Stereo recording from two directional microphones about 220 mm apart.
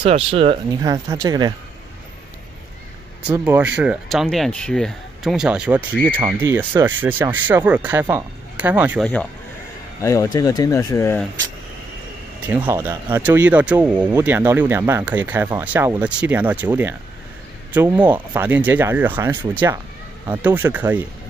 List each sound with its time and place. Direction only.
0.0 s speech: 25° right (ahead or behind)
3.3 s speech: 5° right (ahead or behind)
9.0 s speech: 5° left (ahead or behind)
12.4 s speech: 10° right (ahead or behind)